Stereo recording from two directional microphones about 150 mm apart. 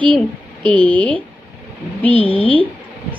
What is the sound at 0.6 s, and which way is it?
Speech, 35° right (ahead or behind).